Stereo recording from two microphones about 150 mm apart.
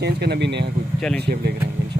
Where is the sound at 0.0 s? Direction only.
90° right.